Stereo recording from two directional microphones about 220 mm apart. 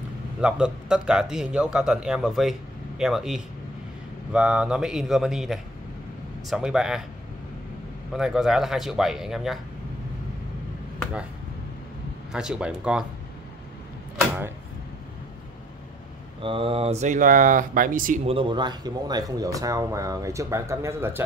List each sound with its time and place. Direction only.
0.4 s a man's voice: 5° right (ahead or behind)
8.1 s a man's voice: centre (ahead or behind)
12.3 s a man's voice: 5° right (ahead or behind)
16.3 s speech: 25° right (ahead or behind)
18.2 s speech: 25° right (ahead or behind)